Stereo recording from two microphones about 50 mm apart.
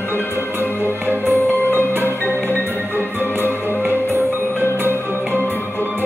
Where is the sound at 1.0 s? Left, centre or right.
Right.